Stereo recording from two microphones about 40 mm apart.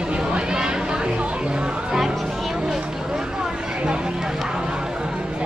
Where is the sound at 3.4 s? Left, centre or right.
Right.